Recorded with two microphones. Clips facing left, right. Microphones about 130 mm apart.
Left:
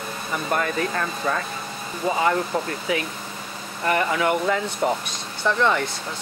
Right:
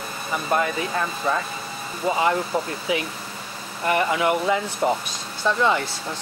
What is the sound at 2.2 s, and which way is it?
Speech, 15° right (ahead or behind).